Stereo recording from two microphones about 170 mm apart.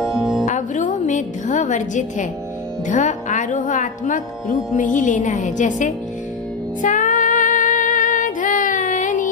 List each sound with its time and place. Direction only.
0.0 s music: centre (ahead or behind)
0.5 s music: 45° left (ahead or behind)
2.9 s speech: 45° left (ahead or behind)
6.8 s music: 50° left (ahead or behind)